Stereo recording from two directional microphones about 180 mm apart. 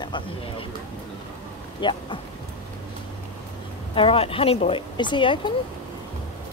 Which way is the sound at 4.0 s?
30° left (ahead or behind).